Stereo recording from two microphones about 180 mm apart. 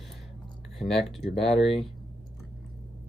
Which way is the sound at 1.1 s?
Centre (ahead or behind).